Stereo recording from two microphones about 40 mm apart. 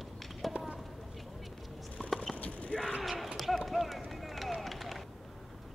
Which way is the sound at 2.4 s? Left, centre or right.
Left.